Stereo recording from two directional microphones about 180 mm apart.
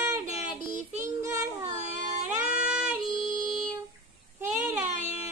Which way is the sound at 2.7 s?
5° right (ahead or behind).